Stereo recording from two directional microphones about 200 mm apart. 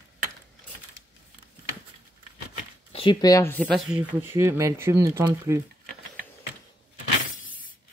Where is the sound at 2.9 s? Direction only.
25° left (ahead or behind).